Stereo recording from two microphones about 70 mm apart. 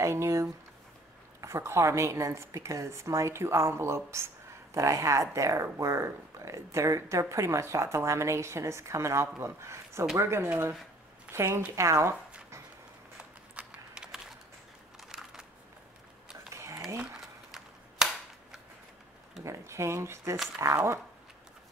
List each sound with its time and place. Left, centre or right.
0.0 s a sound: right
1.4 s speech: right
11.7 s zipper: right
13.2 s typing: centre
16.5 s a sound: right
17.2 s cap gun: centre
19.4 s speech: right